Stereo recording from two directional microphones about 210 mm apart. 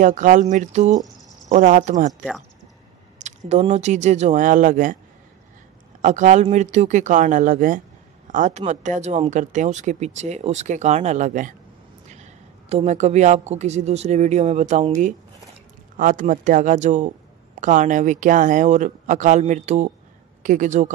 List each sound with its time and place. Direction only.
0.0 s speech: 35° right (ahead or behind)
6.0 s a man's voice: 35° right (ahead or behind)
16.0 s speech: 40° right (ahead or behind)